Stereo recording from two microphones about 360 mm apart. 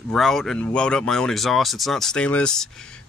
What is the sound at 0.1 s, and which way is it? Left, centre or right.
Speech, centre.